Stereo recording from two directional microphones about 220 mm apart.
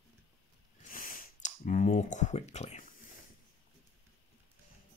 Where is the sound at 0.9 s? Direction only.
40° left (ahead or behind).